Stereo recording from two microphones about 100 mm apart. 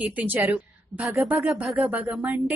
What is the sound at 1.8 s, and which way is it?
Speech, 20° right (ahead or behind).